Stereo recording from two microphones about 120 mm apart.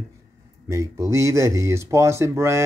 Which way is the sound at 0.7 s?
25° right (ahead or behind).